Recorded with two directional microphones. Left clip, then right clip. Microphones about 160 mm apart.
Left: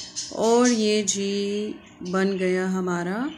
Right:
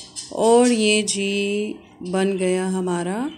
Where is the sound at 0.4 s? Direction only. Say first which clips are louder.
Right 4 dB; 10° right (ahead or behind).